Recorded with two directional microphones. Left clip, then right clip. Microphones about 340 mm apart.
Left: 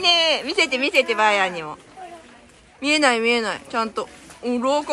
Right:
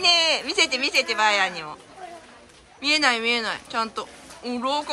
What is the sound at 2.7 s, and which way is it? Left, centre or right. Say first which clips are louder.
A woman's voice: left 3 dB; centre.